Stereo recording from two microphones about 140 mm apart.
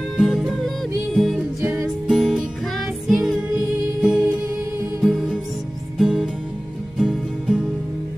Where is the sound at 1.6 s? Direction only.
15° right (ahead or behind).